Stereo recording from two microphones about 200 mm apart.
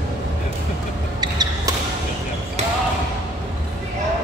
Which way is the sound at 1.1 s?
20° right (ahead or behind).